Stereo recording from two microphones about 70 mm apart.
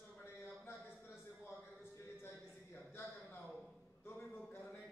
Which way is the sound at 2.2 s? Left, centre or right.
Left.